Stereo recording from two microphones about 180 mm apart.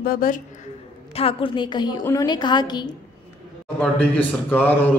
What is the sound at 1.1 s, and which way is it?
A woman's voice, 30° left (ahead or behind).